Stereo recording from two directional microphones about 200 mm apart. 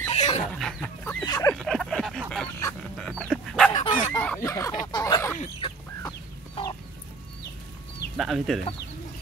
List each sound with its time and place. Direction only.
0.1 s chicken: 30° left (ahead or behind)
0.5 s chicken: 5° left (ahead or behind)
1.2 s a sound: 15° left (ahead or behind)
1.5 s a sound: centre (ahead or behind)
2.6 s dog: 5° left (ahead or behind)
3.7 s dog: 35° left (ahead or behind)
4.1 s a sound: 10° left (ahead or behind)
6.0 s chicken: 20° left (ahead or behind)
8.2 s speech: centre (ahead or behind)